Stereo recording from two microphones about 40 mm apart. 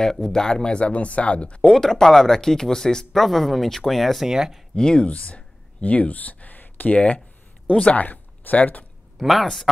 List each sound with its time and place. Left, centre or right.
0.0 s speech: centre; by 1.7 s left
1.7 s speech: centre
4.3 s speech: centre
4.7 s speech: centre
5.0 s speech: left
7.7 s speech: left
9.2 s speech: centre